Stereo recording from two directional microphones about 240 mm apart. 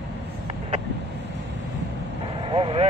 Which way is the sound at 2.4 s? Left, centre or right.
Right.